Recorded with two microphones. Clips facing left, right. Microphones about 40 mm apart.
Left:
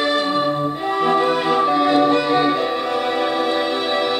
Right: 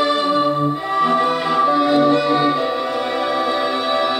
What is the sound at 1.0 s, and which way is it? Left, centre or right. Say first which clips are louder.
Music: even; left.